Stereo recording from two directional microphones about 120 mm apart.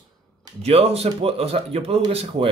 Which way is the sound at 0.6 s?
55° right (ahead or behind).